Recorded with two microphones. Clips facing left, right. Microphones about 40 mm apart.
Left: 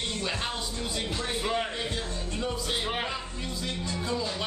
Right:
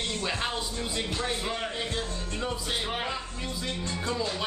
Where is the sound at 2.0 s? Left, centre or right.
Centre.